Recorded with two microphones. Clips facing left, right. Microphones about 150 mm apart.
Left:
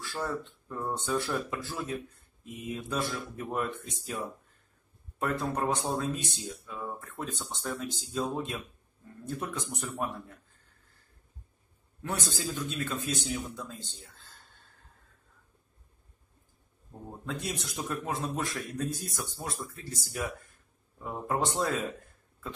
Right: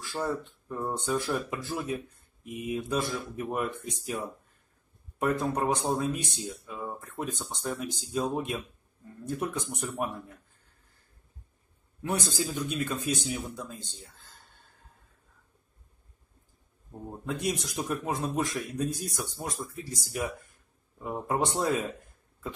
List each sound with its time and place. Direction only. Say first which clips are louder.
0.0 s speech: right 3 dB; 15° right (ahead or behind)
5.2 s speech: right 3 dB; 15° right (ahead or behind)
12.0 s speech: right 4 dB; 15° right (ahead or behind)
17.3 s speech: right 5 dB; 15° right (ahead or behind)